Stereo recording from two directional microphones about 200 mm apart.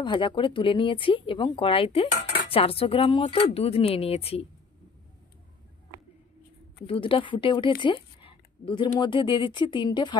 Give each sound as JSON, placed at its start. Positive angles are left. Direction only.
{"t": 0.0, "sound": "speech", "side_deg": 25}
{"t": 6.9, "sound": "speech", "side_deg": 25}